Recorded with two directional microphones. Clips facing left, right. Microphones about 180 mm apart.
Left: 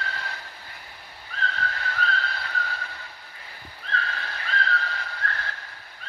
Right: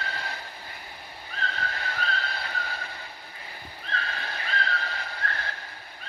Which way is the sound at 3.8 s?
15° right (ahead or behind).